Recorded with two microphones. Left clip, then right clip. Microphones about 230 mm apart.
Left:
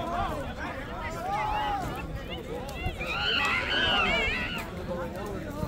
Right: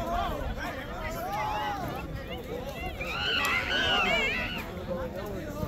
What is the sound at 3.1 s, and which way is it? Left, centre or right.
Frog, centre.